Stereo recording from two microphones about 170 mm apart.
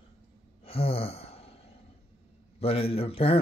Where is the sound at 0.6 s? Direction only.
35° left (ahead or behind).